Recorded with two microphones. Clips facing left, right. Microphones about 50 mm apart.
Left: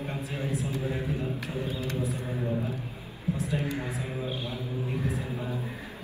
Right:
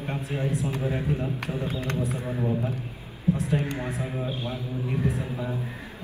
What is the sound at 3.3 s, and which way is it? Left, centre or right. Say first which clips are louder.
A man's voice: right 3 dB; right.